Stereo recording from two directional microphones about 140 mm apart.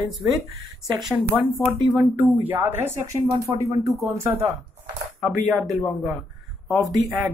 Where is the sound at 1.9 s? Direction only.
15° right (ahead or behind).